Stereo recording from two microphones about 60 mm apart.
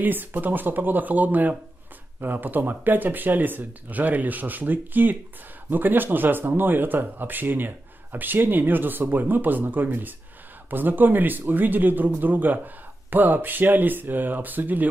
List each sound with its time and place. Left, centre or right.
0.0 s speech: right